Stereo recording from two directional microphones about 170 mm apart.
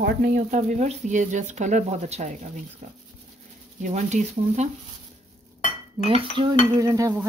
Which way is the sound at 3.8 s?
45° right (ahead or behind).